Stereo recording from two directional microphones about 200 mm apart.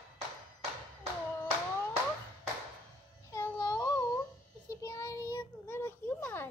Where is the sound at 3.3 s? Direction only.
20° left (ahead or behind).